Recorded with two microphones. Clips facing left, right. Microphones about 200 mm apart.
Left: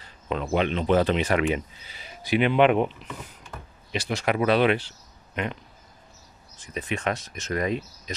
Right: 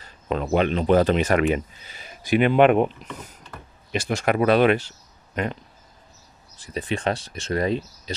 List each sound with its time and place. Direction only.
0.0 s speech: 45° right (ahead or behind)